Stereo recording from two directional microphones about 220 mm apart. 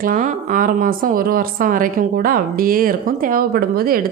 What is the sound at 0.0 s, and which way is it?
Speech, 40° right (ahead or behind).